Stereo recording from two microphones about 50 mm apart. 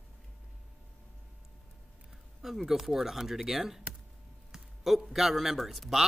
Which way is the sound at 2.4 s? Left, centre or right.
Centre.